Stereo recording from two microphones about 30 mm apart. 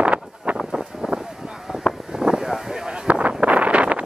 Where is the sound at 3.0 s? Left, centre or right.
Right.